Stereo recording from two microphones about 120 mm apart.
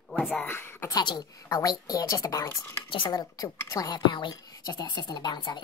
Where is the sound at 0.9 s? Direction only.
35° left (ahead or behind).